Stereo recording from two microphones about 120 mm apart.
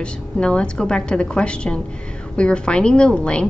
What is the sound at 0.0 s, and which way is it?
A woman's voice, 10° left (ahead or behind).